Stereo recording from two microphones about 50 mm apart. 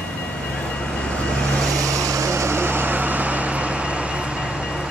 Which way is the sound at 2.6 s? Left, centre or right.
Right.